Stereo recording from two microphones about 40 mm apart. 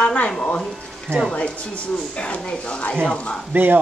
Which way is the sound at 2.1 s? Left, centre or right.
Left.